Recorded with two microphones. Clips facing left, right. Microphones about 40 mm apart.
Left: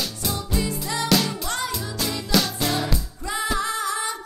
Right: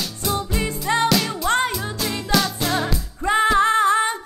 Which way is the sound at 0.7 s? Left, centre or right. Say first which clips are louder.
Right 6 dB; right.